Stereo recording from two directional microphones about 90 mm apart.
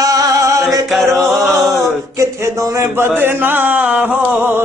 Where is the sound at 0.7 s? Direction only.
Centre (ahead or behind).